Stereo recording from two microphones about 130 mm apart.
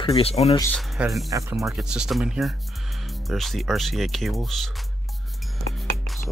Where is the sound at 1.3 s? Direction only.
25° right (ahead or behind).